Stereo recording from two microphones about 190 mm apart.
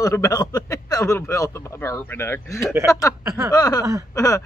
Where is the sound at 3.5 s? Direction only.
20° left (ahead or behind).